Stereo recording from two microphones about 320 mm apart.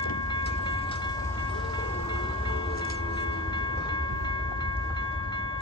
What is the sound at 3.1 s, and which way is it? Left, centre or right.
Train, centre.